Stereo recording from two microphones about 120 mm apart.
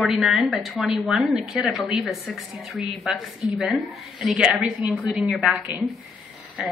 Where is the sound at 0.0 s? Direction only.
5° right (ahead or behind).